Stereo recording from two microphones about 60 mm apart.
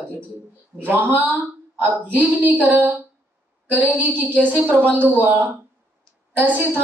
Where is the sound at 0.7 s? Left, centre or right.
Right.